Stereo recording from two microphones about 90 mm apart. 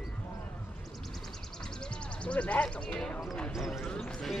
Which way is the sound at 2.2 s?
15° left (ahead or behind).